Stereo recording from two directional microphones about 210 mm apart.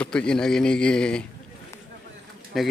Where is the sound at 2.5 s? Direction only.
Centre (ahead or behind).